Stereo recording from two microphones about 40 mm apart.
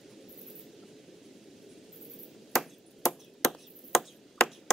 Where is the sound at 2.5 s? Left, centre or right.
Centre.